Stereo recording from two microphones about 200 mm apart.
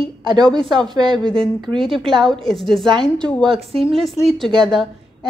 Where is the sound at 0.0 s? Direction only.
25° right (ahead or behind).